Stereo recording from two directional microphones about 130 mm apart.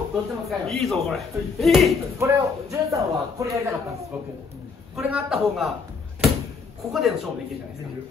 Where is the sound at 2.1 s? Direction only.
25° right (ahead or behind).